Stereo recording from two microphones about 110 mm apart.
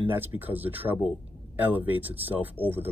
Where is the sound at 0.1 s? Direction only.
20° right (ahead or behind).